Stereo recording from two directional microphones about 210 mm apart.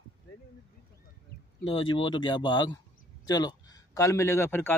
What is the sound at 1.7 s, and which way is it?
A man's voice, 25° left (ahead or behind).